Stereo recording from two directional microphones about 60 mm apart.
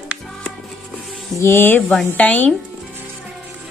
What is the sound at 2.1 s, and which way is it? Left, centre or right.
Speech, left.